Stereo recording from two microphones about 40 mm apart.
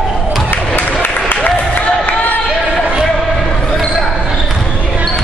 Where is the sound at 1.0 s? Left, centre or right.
Left.